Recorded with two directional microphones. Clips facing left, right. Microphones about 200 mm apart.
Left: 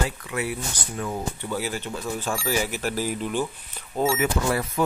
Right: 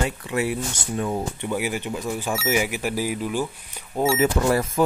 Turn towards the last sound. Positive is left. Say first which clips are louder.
# right 4 dB
turn(degrees=-40)  # may be behind; listen again after turning